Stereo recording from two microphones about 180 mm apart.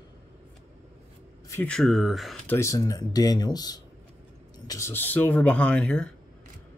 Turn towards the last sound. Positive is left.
turn(degrees=5)  # may be behind; listen again after turning